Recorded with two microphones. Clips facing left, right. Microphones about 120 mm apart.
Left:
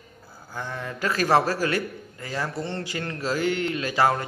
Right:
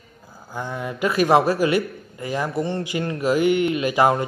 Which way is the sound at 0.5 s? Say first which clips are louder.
Right 4 dB; 15° right (ahead or behind).